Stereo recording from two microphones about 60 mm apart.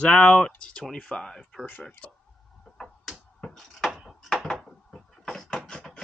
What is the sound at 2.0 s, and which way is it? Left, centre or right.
Speech, left.